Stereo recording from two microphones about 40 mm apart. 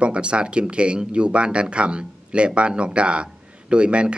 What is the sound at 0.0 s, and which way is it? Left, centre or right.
Speech, right.